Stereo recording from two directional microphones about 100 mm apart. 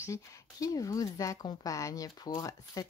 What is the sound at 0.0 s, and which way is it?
Speech, 30° left (ahead or behind).